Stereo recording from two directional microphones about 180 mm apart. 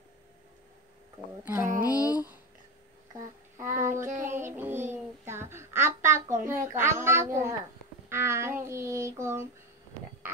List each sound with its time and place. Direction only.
1.4 s speech: 10° right (ahead or behind)
3.6 s child singing: 45° right (ahead or behind)
4.4 s child singing: 10° right (ahead or behind)
5.2 s a sound: 15° right (ahead or behind)
8.1 s child singing: 15° right (ahead or behind)